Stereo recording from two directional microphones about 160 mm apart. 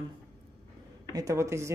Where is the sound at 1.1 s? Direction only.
20° right (ahead or behind).